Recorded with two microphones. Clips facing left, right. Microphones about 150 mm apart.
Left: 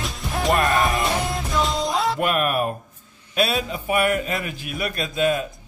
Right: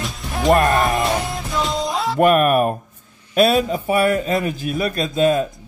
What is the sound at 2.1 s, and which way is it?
A man's voice, 50° right (ahead or behind).